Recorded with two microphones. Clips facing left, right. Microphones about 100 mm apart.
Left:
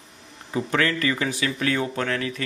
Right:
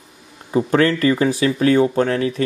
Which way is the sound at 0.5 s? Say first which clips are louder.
Right 8 dB; 40° right (ahead or behind).